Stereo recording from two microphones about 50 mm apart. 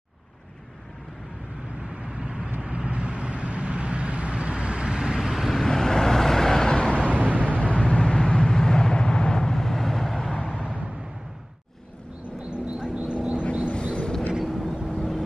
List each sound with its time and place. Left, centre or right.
2.0 s vehicle: centre
5.6 s vehicle: centre
7.1 s vehicle: right
7.4 s vehicle: left; by 10.4 s centre
10.6 s vehicle: right
12.4 s a sound: right
13.7 s vehicle: centre
14.4 s vehicle: centre